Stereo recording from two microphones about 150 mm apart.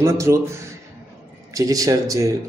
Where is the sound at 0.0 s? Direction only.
20° right (ahead or behind).